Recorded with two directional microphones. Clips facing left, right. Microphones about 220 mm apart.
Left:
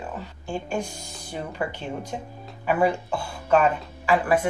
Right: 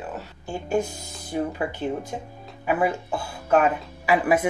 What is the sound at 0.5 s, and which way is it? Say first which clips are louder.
Speech: right 4 dB; 5° right (ahead or behind).